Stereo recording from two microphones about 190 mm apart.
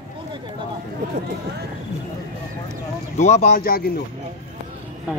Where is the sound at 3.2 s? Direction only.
35° left (ahead or behind).